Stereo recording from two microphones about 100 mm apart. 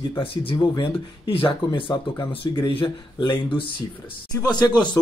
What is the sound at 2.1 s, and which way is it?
A man's voice, 50° left (ahead or behind).